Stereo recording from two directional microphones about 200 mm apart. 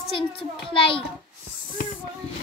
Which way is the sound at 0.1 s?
25° left (ahead or behind).